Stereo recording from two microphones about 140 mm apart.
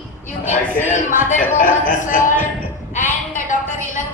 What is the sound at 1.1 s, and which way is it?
Speech, 75° left (ahead or behind).